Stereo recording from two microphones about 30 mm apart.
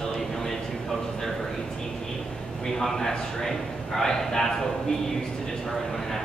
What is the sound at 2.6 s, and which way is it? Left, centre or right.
A man's voice, centre.